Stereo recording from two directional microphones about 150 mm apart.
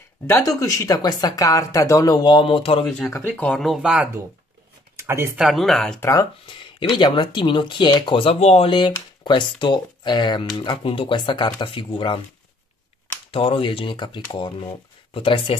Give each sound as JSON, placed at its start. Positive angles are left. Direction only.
{"t": 0.3, "sound": "speech", "side_deg": 20}
{"t": 3.3, "sound": "speech", "side_deg": 10}
{"t": 4.9, "sound": "speech", "side_deg": -20}
{"t": 5.4, "sound": "speech", "side_deg": 0}
{"t": 5.9, "sound": "speech", "side_deg": 20}
{"t": 6.4, "sound": "speech", "side_deg": 35}
{"t": 13.3, "sound": "speech", "side_deg": 35}